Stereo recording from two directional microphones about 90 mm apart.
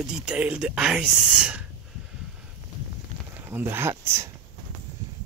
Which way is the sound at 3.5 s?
25° right (ahead or behind).